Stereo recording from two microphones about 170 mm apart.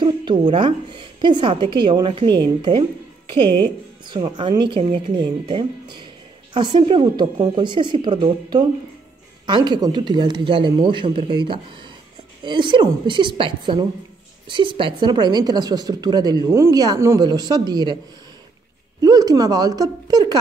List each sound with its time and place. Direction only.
0.0 s a woman's voice: 25° right (ahead or behind)
18.9 s a woman's voice: 20° right (ahead or behind)